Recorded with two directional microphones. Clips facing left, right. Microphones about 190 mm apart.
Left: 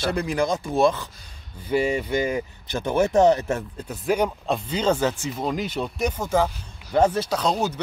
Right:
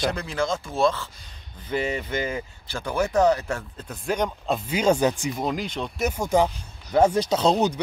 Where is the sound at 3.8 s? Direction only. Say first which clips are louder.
Left 3 dB; 10° left (ahead or behind).